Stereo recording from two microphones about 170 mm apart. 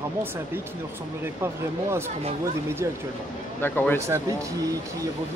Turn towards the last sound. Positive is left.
turn(degrees=10)  # may be behind; listen again after turning